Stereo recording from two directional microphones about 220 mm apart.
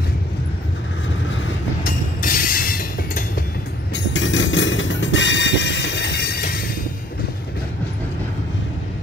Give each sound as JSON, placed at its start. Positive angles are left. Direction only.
{"t": 1.9, "sound": "train", "side_deg": 40}
{"t": 3.9, "sound": "train", "side_deg": 60}